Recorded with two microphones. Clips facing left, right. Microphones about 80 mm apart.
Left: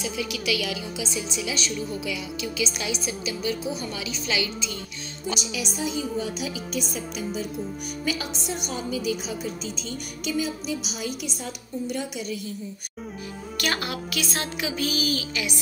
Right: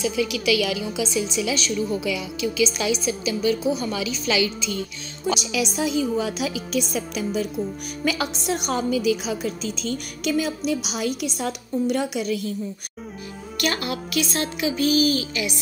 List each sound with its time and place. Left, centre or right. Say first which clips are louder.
0.3 s a woman's voice: right 6 dB; right
5.2 s a woman's voice: right 7 dB; right
14.9 s music: right 11 dB; right